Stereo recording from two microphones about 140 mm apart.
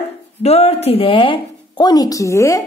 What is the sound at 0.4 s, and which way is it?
A woman's voice, 50° left (ahead or behind).